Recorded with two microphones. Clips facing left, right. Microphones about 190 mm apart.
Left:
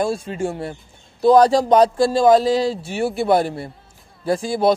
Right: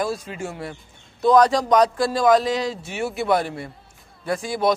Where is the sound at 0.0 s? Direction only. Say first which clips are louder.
Left 5 dB; 30° left (ahead or behind).